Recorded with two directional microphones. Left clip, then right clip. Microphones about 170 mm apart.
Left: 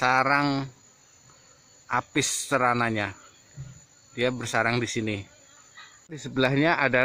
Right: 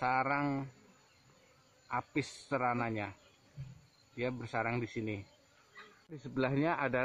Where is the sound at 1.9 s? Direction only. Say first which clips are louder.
Left 11 dB; 20° left (ahead or behind).